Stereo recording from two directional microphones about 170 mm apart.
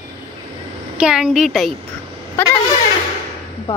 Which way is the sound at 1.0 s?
5° right (ahead or behind).